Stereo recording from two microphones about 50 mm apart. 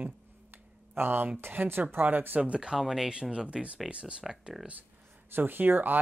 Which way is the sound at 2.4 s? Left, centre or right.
Right.